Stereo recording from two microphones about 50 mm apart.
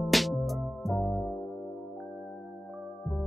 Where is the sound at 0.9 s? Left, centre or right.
Centre.